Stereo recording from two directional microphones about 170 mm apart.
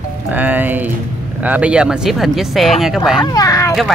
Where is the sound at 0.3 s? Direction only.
10° right (ahead or behind).